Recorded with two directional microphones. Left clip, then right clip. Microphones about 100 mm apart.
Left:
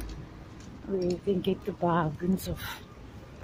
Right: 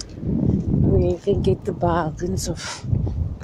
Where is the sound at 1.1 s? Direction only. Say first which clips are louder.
Right 9 dB; 10° right (ahead or behind).